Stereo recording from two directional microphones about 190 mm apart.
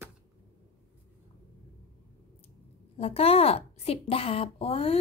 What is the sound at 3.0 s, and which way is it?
A woman's voice, 30° left (ahead or behind).